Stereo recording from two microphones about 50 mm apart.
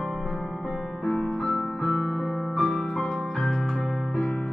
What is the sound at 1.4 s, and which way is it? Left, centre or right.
Music, centre.